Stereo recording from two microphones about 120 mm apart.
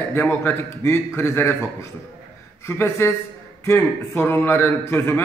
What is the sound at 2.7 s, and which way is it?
A man's voice, 20° left (ahead or behind).